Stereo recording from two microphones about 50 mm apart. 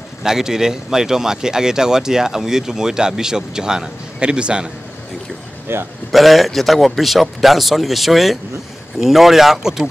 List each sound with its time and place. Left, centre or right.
0.2 s speech: centre
5.7 s a man's voice: right
6.1 s a man's voice: centre